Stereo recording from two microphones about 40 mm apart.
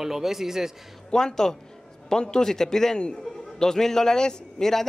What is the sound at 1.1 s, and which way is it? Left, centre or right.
A man's voice, centre.